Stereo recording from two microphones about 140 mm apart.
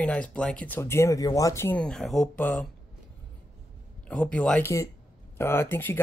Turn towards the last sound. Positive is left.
turn(degrees=15)  # may be behind; listen again after turning